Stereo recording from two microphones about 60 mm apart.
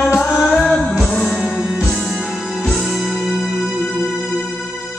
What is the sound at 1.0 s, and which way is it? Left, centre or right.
Music, centre.